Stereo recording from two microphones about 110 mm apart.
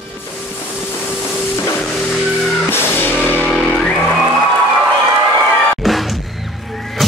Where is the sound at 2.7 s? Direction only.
20° left (ahead or behind).